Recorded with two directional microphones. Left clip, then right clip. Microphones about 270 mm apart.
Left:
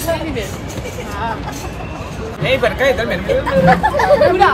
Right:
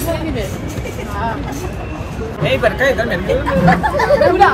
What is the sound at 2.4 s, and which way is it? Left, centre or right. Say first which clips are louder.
Speech: even; centre.